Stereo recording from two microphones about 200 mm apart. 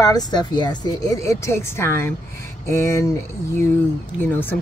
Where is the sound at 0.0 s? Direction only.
20° left (ahead or behind).